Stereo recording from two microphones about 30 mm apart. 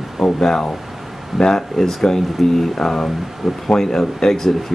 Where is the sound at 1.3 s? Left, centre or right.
Centre.